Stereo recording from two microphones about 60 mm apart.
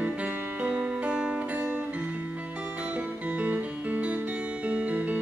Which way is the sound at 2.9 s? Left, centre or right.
Right.